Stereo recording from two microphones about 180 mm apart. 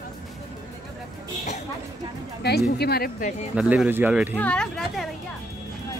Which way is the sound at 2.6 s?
55° left (ahead or behind).